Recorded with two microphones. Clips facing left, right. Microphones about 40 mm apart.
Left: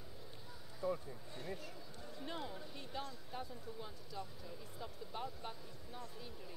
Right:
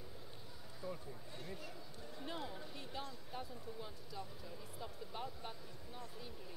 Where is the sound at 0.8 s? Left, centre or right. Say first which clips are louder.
Left 7 dB; centre.